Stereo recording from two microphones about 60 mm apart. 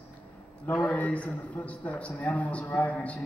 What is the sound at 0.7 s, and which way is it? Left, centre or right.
A man's voice, left.